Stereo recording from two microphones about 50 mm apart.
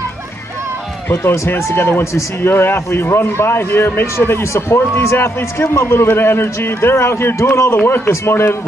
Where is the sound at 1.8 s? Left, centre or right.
Left.